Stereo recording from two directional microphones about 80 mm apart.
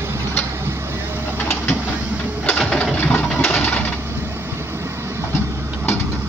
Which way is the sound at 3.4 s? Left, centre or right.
Left.